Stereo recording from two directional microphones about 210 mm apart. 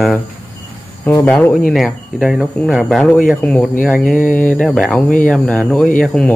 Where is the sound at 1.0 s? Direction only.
10° left (ahead or behind).